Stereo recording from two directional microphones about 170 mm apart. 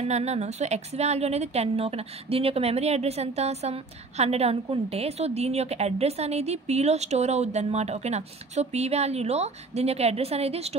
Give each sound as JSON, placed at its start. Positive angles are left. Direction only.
{"t": 0.1, "sound": "a woman's voice", "side_deg": -40}